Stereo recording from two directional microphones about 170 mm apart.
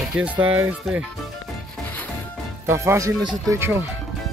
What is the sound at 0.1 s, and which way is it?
Speech, 10° right (ahead or behind).